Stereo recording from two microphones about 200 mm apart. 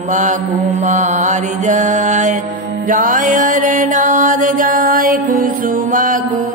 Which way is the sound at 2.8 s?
40° right (ahead or behind).